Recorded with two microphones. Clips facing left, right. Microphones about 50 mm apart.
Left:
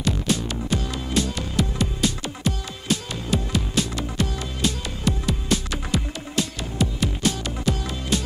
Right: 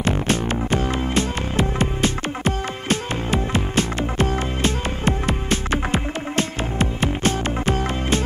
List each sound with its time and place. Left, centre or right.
0.0 s music: right